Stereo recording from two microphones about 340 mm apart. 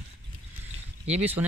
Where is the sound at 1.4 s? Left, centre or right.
Centre.